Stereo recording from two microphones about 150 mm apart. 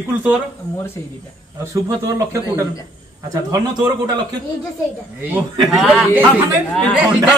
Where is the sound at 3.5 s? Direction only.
25° right (ahead or behind).